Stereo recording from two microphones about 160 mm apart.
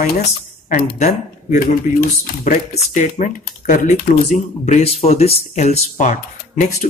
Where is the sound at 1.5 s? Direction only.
60° left (ahead or behind).